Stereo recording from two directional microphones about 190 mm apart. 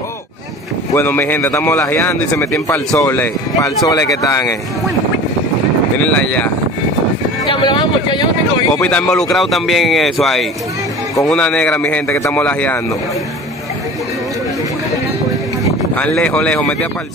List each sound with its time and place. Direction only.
0.9 s a man's voice: 10° left (ahead or behind)
5.9 s a man's voice: 10° left (ahead or behind)
7.4 s speech: 25° left (ahead or behind)
8.8 s a man's voice: 5° left (ahead or behind)
15.9 s a man's voice: 5° left (ahead or behind)